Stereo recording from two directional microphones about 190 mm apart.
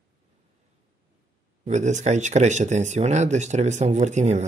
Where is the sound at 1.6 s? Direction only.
35° right (ahead or behind).